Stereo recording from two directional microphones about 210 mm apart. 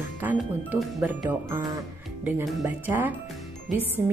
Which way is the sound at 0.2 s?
10° right (ahead or behind).